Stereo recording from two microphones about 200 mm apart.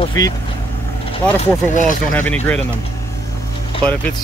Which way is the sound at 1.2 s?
5° left (ahead or behind).